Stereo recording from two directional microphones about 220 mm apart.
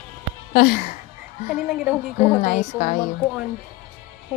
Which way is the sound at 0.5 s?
40° left (ahead or behind).